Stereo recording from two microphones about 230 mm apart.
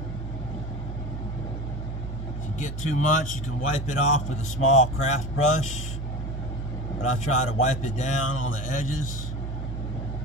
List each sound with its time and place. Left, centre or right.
2.6 s speech: left
7.0 s speech: left